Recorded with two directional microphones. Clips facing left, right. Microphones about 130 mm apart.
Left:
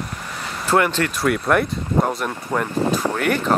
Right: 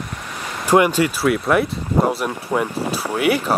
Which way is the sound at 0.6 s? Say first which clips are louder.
Right 4 dB; 15° right (ahead or behind).